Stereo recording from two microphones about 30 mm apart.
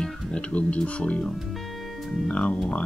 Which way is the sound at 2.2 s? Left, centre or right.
Left.